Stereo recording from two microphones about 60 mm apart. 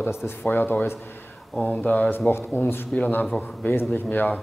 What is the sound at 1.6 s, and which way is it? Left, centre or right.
Speech, left.